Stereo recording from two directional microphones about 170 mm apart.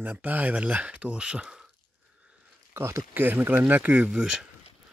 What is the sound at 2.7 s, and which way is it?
Speech, 15° right (ahead or behind).